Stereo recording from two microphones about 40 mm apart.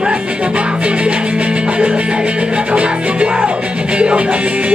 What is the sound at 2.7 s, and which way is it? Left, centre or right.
Music, right.